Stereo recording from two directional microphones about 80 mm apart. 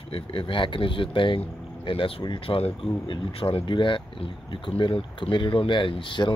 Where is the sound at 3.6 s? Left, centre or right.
Left.